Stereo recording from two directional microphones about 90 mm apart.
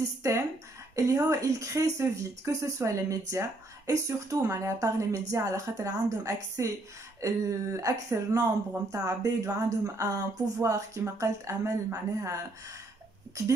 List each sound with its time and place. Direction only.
0.2 s speech: 35° right (ahead or behind)
13.4 s speech: 35° right (ahead or behind)